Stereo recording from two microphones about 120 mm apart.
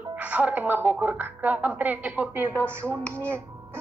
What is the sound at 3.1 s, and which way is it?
Music, 20° right (ahead or behind).